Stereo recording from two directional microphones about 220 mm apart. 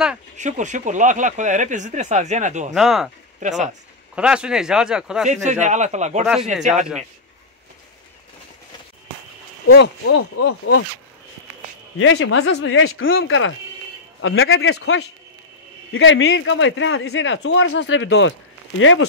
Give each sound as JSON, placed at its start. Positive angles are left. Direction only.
{"t": 0.4, "sound": "speech", "side_deg": -35}
{"t": 2.7, "sound": "a man's voice", "side_deg": 0}
{"t": 3.3, "sound": "speech", "side_deg": -35}
{"t": 4.1, "sound": "a man's voice", "side_deg": -5}
{"t": 5.3, "sound": "speech", "side_deg": -35}
{"t": 9.7, "sound": "speech", "side_deg": 50}
{"t": 12.0, "sound": "a man's voice", "side_deg": 70}
{"t": 15.9, "sound": "speech", "side_deg": 65}